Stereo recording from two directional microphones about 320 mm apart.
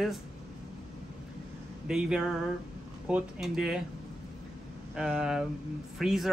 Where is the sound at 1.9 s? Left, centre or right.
Centre.